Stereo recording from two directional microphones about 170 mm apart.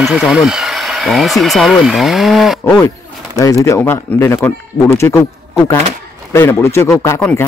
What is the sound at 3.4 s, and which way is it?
Speech, 20° left (ahead or behind).